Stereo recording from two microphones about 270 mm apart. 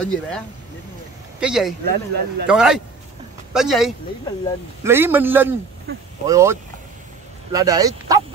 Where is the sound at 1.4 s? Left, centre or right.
Centre.